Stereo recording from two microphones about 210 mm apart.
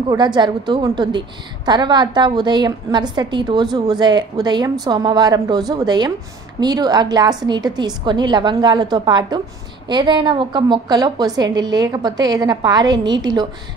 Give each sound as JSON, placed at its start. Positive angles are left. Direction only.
{"t": 0.1, "sound": "a woman's voice", "side_deg": -20}